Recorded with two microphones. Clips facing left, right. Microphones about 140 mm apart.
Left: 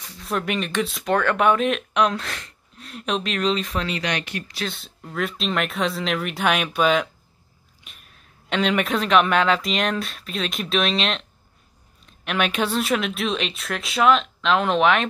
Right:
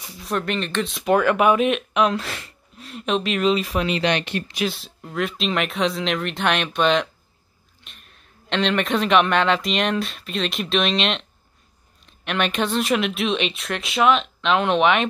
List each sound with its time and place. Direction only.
0.2 s speech: centre (ahead or behind)
3.8 s speech: 25° right (ahead or behind)
4.6 s a man's voice: centre (ahead or behind)
12.3 s speech: 5° left (ahead or behind)